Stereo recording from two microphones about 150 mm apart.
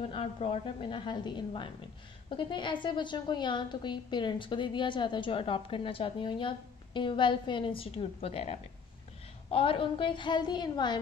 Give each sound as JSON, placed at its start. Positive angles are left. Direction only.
{"t": 0.0, "sound": "a woman's voice", "side_deg": 40}